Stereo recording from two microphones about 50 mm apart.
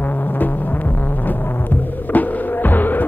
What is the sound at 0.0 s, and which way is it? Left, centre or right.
Music, left.